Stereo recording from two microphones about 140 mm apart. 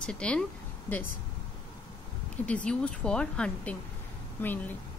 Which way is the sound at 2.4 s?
10° left (ahead or behind).